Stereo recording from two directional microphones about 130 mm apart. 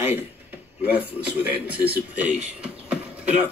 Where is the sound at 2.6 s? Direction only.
10° right (ahead or behind).